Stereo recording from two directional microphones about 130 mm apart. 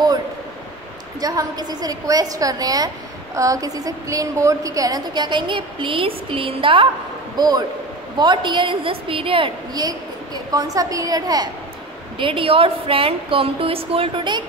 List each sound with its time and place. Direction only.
1.2 s a woman's voice: 30° right (ahead or behind)
7.3 s a woman's voice: 30° right (ahead or behind)
9.8 s a woman's voice: 30° right (ahead or behind)
12.2 s a woman's voice: 45° right (ahead or behind)